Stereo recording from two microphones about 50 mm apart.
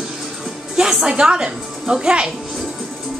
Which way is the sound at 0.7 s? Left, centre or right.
Centre.